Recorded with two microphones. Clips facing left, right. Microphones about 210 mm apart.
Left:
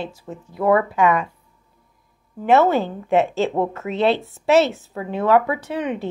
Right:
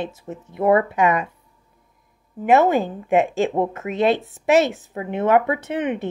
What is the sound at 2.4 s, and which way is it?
A woman's voice, 15° right (ahead or behind).